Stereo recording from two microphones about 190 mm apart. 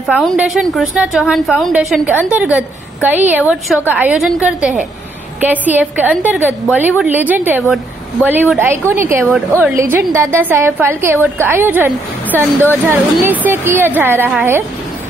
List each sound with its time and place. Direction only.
0.1 s a woman's voice: 5° right (ahead or behind)